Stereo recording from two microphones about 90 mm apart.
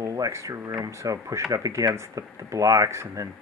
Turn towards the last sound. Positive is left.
turn(degrees=-35)  # may be behind; listen again after turning